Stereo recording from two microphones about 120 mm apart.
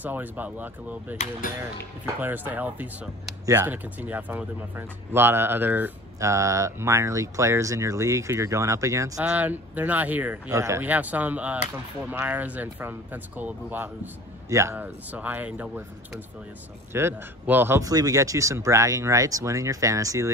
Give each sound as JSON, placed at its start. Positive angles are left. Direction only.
{"t": 0.0, "sound": "speech", "side_deg": -15}
{"t": 2.1, "sound": "speech", "side_deg": -15}
{"t": 6.1, "sound": "speech", "side_deg": -25}
{"t": 9.2, "sound": "speech", "side_deg": -10}
{"t": 10.5, "sound": "speech", "side_deg": -25}
{"t": 16.9, "sound": "speech", "side_deg": -20}